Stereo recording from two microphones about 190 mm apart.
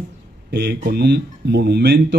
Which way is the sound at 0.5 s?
65° right (ahead or behind).